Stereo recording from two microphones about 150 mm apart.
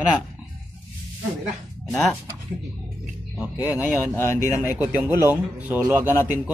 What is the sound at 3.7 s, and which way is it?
Speech, 10° right (ahead or behind).